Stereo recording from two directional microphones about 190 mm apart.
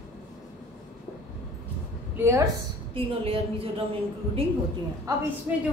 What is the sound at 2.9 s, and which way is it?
Speech, 30° right (ahead or behind).